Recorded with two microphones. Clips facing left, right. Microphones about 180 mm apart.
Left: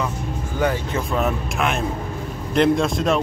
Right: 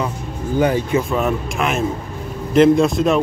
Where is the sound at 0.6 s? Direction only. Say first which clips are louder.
Right 6 dB; 15° right (ahead or behind).